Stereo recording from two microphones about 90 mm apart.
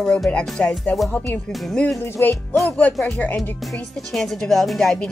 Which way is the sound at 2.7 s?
15° left (ahead or behind).